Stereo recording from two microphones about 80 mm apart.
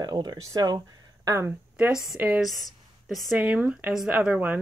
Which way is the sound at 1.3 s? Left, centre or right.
Right.